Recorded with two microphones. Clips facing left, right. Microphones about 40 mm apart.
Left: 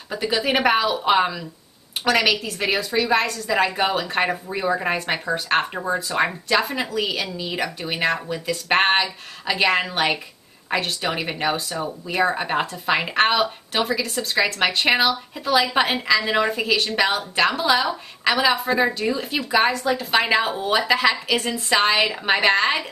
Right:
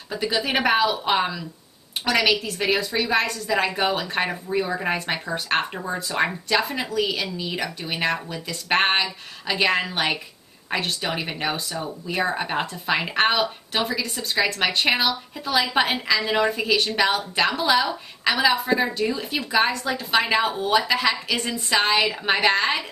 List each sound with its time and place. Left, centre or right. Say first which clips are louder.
0.1 s a woman's voice: left 2 dB; centre
4.3 s a woman's voice: left 2 dB; centre
20.5 s speech: even; left
20.8 s speech: left 3 dB; centre